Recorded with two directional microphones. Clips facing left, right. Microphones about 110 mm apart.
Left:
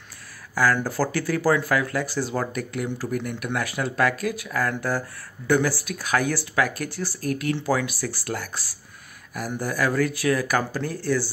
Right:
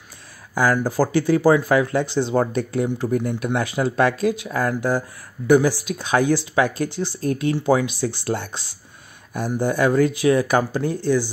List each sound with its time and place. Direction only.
0.8 s speech: 15° right (ahead or behind)